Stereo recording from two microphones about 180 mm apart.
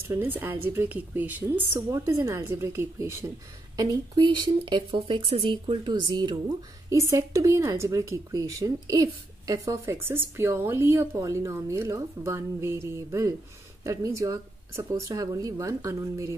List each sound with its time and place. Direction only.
0.1 s speech: 10° right (ahead or behind)